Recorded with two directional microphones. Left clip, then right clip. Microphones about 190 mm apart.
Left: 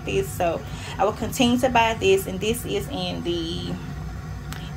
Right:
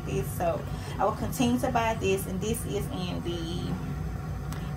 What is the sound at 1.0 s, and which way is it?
A woman's voice, centre (ahead or behind).